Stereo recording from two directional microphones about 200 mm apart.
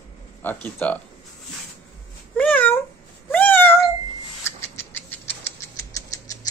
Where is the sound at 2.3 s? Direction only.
5° left (ahead or behind).